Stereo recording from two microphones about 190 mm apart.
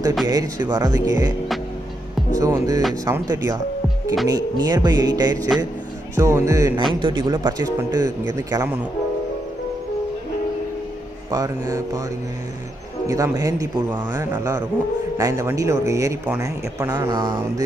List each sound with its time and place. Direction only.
0.3 s speech: 20° right (ahead or behind)
2.3 s speech: 15° right (ahead or behind)
11.2 s speech: 20° right (ahead or behind)
13.0 s speech: 15° right (ahead or behind)